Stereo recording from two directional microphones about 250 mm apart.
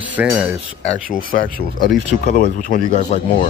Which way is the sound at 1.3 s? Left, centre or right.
Left.